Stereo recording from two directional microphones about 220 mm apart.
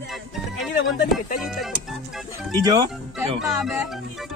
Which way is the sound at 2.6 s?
15° right (ahead or behind).